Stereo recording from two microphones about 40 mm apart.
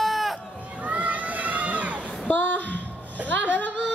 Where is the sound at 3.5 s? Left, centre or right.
Left.